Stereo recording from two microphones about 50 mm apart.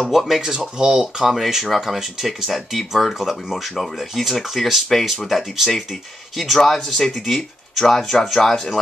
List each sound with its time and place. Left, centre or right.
0.1 s speech: centre